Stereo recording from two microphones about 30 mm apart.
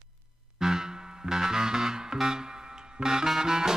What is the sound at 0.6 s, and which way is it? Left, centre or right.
Music, centre.